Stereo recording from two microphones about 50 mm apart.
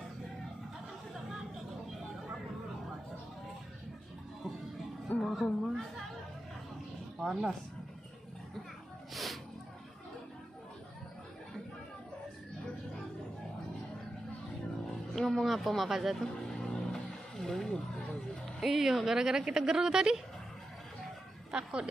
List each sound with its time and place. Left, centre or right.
5.2 s speech: centre
7.2 s speech: centre
9.1 s music: centre
15.1 s music: centre
16.6 s vehicle: centre
18.6 s speech: centre
21.5 s speech: centre